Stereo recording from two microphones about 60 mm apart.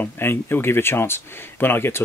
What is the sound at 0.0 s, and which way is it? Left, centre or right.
Speech, left.